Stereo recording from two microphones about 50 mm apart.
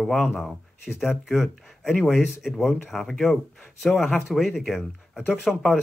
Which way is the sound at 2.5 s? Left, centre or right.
Centre.